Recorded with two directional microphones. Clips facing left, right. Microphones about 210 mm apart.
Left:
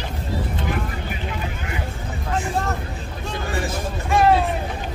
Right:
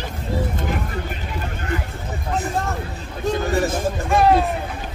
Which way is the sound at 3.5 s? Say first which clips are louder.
Right 3 dB; 45° right (ahead or behind).